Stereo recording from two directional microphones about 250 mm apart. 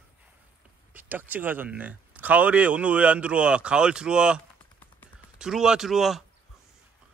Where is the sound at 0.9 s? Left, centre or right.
Centre.